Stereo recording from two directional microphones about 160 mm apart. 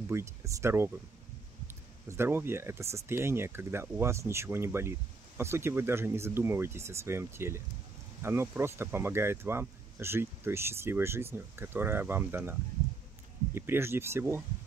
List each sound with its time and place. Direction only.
0.1 s speech: 20° right (ahead or behind)
2.0 s speech: 15° right (ahead or behind)
13.6 s speech: 15° right (ahead or behind)